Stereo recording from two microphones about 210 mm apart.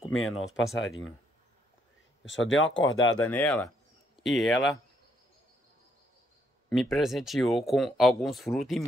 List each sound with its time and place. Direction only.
0.1 s speech: 80° left
2.2 s speech: 60° left (ahead or behind)
3.3 s speech: 10° left (ahead or behind)
6.7 s speech: centre (ahead or behind)